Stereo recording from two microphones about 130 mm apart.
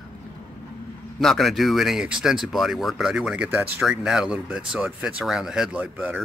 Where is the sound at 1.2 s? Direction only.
Centre (ahead or behind).